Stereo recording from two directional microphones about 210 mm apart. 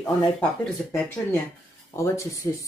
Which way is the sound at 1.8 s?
15° left (ahead or behind).